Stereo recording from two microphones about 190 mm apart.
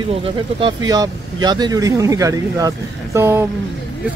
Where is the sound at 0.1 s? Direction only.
30° right (ahead or behind).